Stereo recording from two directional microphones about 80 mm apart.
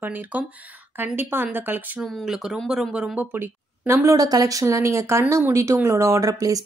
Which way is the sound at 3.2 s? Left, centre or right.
Right.